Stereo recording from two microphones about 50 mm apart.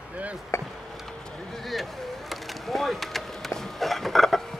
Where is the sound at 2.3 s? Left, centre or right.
Centre.